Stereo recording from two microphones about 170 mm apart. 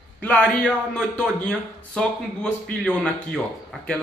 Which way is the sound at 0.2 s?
5° left (ahead or behind).